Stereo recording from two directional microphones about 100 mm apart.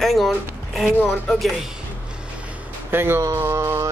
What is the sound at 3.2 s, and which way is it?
Mantra, 30° right (ahead or behind).